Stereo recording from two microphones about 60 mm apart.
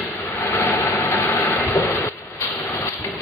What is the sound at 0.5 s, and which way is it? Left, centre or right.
Vehicle, left.